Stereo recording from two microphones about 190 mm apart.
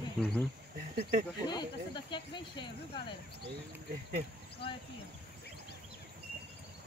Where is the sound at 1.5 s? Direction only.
25° left (ahead or behind).